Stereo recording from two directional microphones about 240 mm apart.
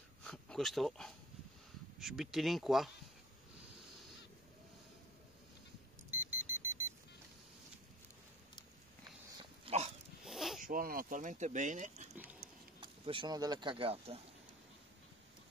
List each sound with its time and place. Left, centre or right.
0.2 s a sound: centre
2.0 s speech: centre
6.0 s vehicle: centre
9.7 s dog: right
10.2 s a sound: centre
10.6 s speech: right